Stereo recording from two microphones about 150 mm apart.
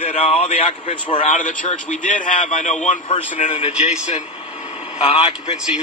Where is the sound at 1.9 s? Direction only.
50° left (ahead or behind).